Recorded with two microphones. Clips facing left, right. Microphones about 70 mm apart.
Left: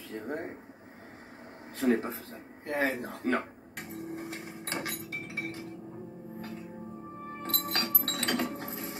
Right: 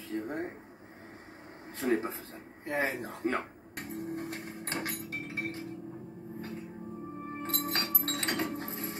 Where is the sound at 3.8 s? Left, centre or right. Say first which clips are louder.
Right 2 dB; centre.